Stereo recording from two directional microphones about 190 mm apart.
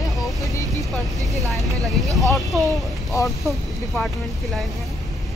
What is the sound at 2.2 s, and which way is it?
Speech, centre (ahead or behind).